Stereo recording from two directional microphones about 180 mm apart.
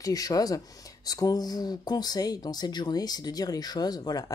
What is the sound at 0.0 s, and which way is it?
Speech, 20° left (ahead or behind).